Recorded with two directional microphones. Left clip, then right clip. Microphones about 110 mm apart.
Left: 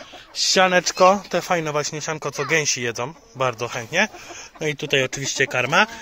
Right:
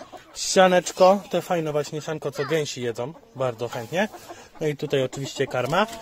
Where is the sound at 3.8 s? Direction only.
45° right (ahead or behind).